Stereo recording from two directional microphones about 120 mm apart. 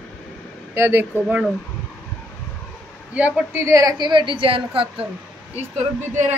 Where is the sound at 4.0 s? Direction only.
40° right (ahead or behind).